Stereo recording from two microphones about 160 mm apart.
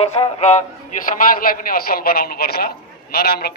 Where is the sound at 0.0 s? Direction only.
45° left (ahead or behind).